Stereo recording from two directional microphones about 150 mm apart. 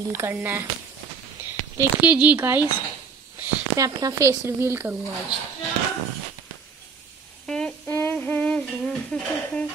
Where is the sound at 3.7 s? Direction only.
20° right (ahead or behind).